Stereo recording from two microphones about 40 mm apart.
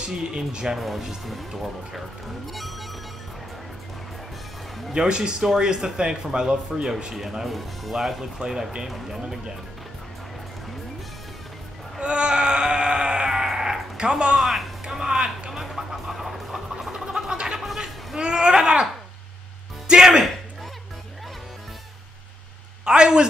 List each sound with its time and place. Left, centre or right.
0.0 s speech: centre
0.7 s speech: centre
4.9 s speech: centre
7.2 s speech: centre
12.0 s a sound: right
13.9 s speech: right
14.3 s music: centre
15.5 s music: centre
17.6 s a sound: centre
18.1 s a sound: right
19.9 s music: centre
22.8 s a sound: right